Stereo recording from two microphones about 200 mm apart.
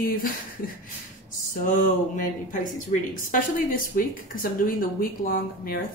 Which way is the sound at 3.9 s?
45° left (ahead or behind).